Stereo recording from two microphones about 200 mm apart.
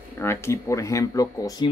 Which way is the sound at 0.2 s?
10° left (ahead or behind).